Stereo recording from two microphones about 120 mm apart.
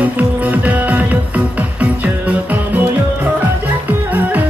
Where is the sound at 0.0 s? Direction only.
15° right (ahead or behind).